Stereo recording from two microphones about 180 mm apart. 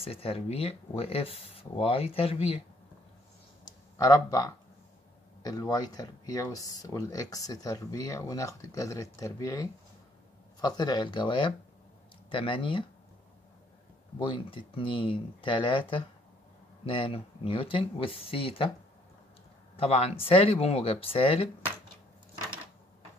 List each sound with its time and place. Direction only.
0.0 s speech: 30° left (ahead or behind)
3.6 s a sound: 20° left (ahead or behind)
5.4 s speech: 20° left (ahead or behind)
14.1 s speech: 30° left (ahead or behind)
19.8 s speech: 35° left (ahead or behind)